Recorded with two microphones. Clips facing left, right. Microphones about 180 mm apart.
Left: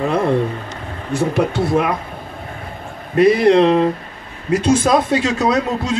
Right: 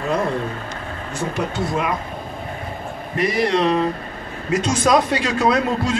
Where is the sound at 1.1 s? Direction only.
60° left (ahead or behind).